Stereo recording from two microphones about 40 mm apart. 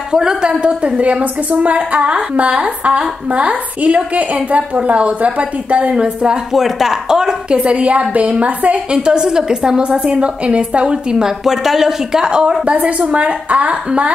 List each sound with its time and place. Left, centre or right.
0.1 s a woman's voice: centre
6.5 s speech: centre
7.5 s a woman's voice: right
8.9 s a woman's voice: right
12.7 s a woman's voice: right